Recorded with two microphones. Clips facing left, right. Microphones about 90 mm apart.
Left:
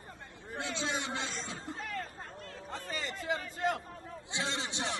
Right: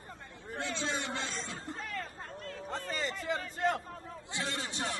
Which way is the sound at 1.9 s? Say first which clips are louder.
Even; 35° left (ahead or behind).